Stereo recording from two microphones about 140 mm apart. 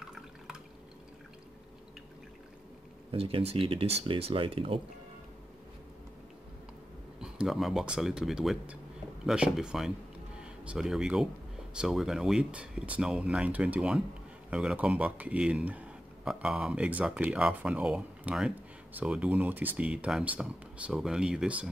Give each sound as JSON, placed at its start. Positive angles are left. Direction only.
{"t": 3.1, "sound": "speech", "side_deg": -40}
{"t": 7.2, "sound": "speech", "side_deg": -5}